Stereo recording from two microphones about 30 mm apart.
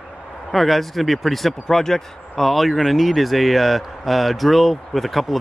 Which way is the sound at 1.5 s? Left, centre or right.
Centre.